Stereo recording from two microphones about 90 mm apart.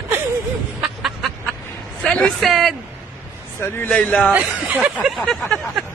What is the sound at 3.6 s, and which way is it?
Speech, 25° left (ahead or behind).